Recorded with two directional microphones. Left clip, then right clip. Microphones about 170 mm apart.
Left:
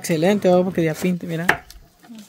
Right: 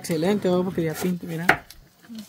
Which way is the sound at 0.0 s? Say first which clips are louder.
Left 6 dB; 50° left (ahead or behind).